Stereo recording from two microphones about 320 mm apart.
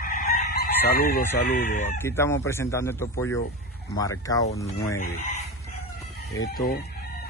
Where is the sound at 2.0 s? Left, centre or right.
Centre.